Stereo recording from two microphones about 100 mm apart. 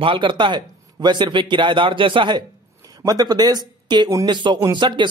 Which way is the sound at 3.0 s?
40° right (ahead or behind).